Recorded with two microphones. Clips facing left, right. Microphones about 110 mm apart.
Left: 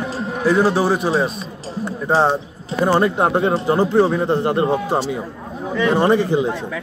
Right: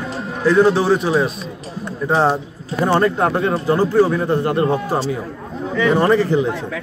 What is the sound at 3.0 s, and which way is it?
A man's voice, 20° left (ahead or behind).